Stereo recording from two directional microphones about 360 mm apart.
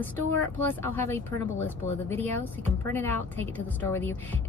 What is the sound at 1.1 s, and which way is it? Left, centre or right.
A woman's voice, centre.